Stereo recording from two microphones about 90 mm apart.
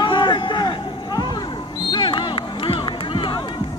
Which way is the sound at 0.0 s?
60° left (ahead or behind).